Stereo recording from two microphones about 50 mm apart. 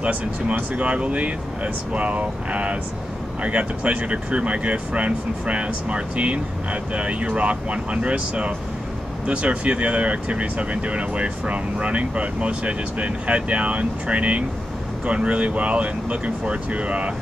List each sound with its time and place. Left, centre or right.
0.0 s speech: right